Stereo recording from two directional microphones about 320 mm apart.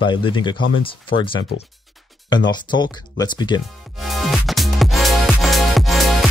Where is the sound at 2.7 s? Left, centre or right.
Centre.